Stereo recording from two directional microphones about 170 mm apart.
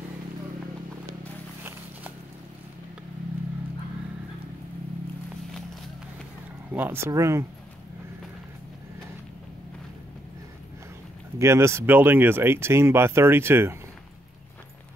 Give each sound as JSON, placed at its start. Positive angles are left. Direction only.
{"t": 1.6, "sound": "a sound", "side_deg": -10}
{"t": 6.7, "sound": "speech", "side_deg": -10}
{"t": 11.3, "sound": "speech", "side_deg": -15}